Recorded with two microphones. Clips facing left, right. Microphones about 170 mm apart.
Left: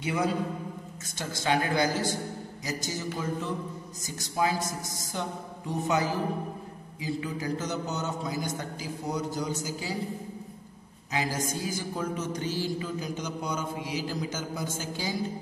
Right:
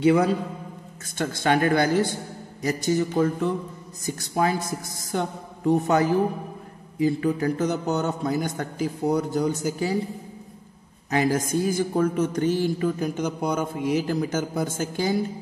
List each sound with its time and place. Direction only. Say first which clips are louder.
0.0 s speech: right 9 dB; 60° right (ahead or behind)
11.1 s speech: right 8 dB; 55° right (ahead or behind)